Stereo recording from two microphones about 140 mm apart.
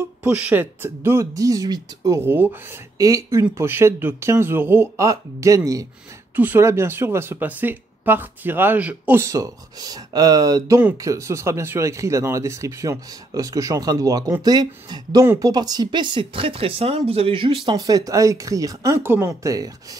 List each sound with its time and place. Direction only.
0.2 s speech: 10° right (ahead or behind); by 17.7 s 40° right (ahead or behind)
17.7 s speech: 25° right (ahead or behind)